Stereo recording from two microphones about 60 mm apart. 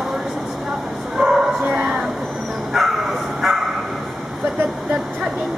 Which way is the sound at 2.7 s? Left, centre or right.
Centre.